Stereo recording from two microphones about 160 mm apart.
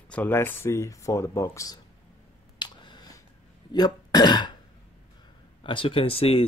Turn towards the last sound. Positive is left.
turn(degrees=35)  # may be behind; listen again after turning